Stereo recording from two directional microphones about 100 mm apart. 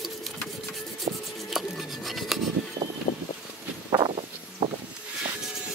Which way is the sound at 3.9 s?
25° right (ahead or behind).